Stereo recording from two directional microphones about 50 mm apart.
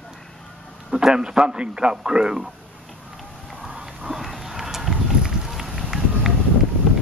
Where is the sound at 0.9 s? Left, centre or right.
Centre.